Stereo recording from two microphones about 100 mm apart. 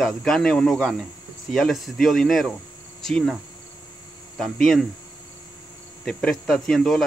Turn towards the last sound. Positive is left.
turn(degrees=5)  # may be behind; listen again after turning